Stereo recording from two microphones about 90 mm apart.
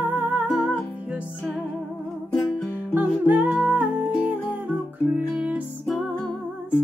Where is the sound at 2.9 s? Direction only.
20° right (ahead or behind).